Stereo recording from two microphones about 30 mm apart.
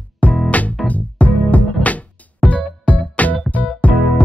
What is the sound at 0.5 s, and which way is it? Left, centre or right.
Music, left.